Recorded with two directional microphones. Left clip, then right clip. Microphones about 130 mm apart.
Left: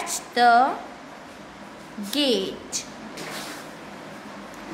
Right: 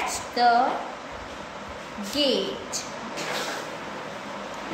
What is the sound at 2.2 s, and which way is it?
Speech, 35° left (ahead or behind).